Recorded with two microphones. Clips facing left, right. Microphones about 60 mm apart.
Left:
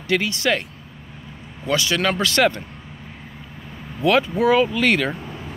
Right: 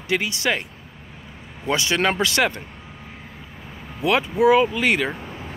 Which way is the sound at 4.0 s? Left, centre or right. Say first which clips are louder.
Left 1 dB; centre.